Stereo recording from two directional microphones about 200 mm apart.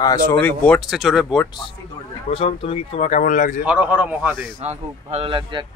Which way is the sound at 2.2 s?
30° left (ahead or behind).